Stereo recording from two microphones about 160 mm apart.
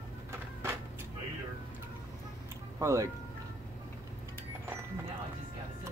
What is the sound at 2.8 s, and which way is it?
Speech, 20° right (ahead or behind).